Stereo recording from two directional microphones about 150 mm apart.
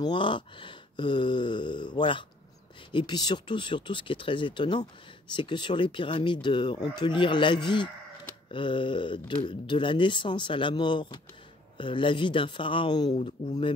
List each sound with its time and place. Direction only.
0.0 s speech: 35° left (ahead or behind)